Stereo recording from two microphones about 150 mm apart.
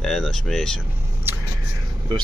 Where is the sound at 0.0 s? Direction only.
Centre (ahead or behind).